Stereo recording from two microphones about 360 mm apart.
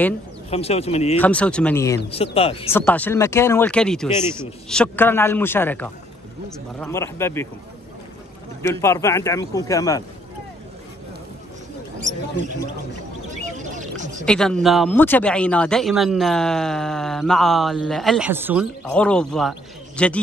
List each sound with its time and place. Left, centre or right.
0.5 s speech: centre
1.2 s speech: centre
2.8 s speech: centre
8.6 s speech: centre
13.6 s a sound: centre
14.2 s speech: centre